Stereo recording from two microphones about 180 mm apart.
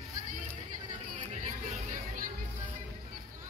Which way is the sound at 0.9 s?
45° right (ahead or behind).